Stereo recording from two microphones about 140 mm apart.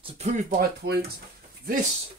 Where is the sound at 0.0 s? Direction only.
50° right (ahead or behind).